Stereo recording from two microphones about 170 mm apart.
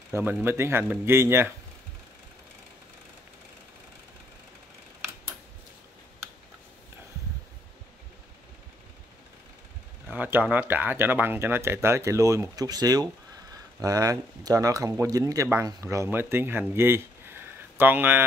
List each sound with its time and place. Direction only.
0.1 s speech: 10° right (ahead or behind)
10.0 s speech: 10° right (ahead or behind)